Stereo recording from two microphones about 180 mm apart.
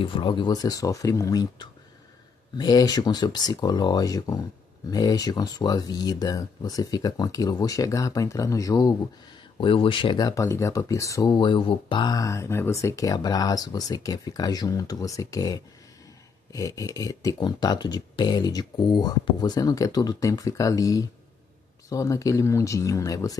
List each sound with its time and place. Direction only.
0.0 s speech: 25° left (ahead or behind)